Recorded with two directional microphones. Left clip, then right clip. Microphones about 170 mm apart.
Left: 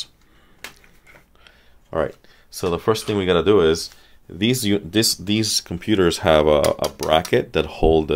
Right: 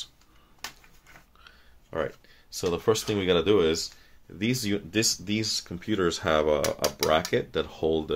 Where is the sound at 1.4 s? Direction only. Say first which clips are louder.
Left 3 dB; 30° left (ahead or behind).